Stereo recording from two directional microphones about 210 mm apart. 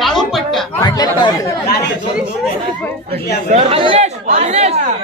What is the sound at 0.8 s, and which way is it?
Chatter, 20° left (ahead or behind).